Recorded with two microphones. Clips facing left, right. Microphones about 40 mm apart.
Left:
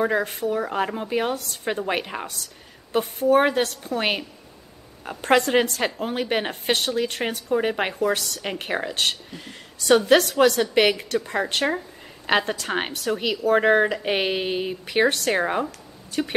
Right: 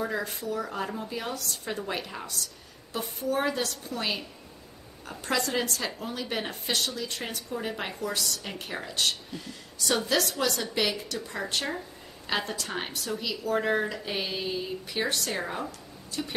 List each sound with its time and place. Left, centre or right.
0.0 s a woman's voice: left
5.2 s a woman's voice: left